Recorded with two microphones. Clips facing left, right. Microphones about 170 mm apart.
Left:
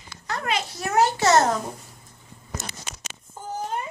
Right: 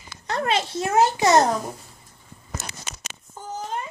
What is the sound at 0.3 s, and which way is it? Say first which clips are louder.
A child's voice: right 4 dB; 30° right (ahead or behind).